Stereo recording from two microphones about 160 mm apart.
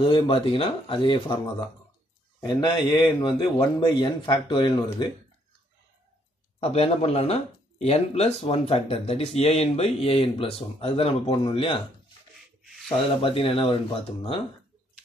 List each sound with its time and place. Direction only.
0.0 s speech: 35° left (ahead or behind)
2.4 s speech: 25° left (ahead or behind)
6.6 s speech: 40° left (ahead or behind)
13.2 s speech: 35° left (ahead or behind)